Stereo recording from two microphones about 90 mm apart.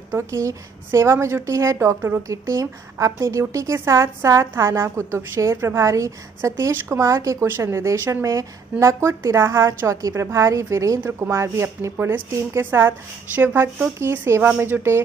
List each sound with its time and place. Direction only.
0.1 s speech: 35° right (ahead or behind)
2.2 s speech: 40° right (ahead or behind)